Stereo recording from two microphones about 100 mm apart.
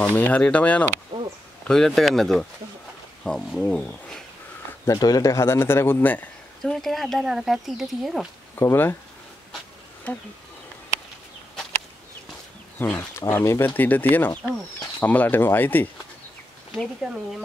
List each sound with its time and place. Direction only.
0.0 s speech: 15° left (ahead or behind)
1.1 s a sound: 50° right (ahead or behind)
1.7 s speech: 5° left (ahead or behind)
4.8 s speech: 40° left (ahead or behind); by 6.2 s 20° left (ahead or behind)
6.6 s speech: 5° left (ahead or behind)
8.5 s speech: 25° left (ahead or behind)
10.1 s speech: 10° left (ahead or behind)
12.7 s speech: 20° left (ahead or behind)
17.0 s speech: 5° right (ahead or behind)